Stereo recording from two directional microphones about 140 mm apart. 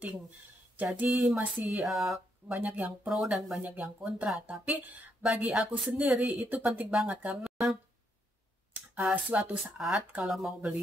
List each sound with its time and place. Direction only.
0.7 s speech: 10° right (ahead or behind)
8.7 s speech: 10° right (ahead or behind)